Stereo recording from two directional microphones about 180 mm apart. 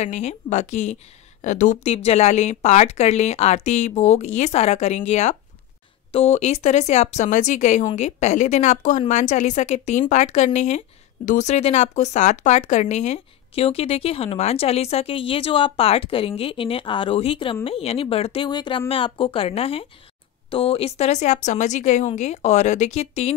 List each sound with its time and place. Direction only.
0.0 s speech: 40° left (ahead or behind)